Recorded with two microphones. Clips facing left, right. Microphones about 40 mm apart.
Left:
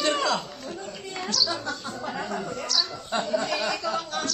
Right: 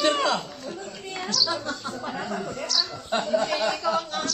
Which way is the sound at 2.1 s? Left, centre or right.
Centre.